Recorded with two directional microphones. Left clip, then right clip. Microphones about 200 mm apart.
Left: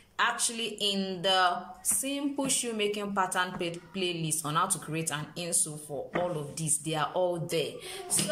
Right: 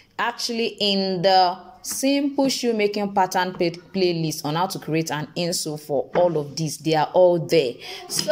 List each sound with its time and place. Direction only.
0.2 s a woman's voice: 30° right (ahead or behind)